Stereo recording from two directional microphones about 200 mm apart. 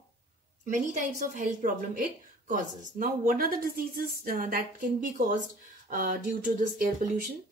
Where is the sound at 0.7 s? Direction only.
40° right (ahead or behind).